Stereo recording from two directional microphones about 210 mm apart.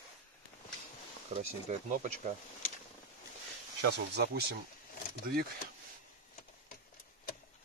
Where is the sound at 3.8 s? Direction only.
50° right (ahead or behind).